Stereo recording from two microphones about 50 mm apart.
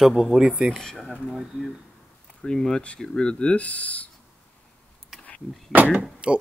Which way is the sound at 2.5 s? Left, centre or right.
Centre.